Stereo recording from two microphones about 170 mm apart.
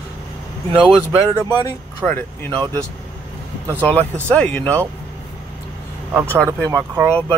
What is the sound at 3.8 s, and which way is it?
Speech, 10° left (ahead or behind).